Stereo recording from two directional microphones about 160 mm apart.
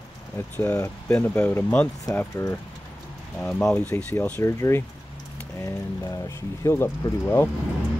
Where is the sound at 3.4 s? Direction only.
5° left (ahead or behind).